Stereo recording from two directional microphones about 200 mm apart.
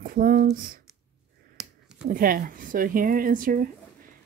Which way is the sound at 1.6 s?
Centre (ahead or behind).